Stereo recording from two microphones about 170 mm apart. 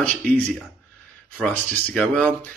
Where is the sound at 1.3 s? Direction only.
5° left (ahead or behind).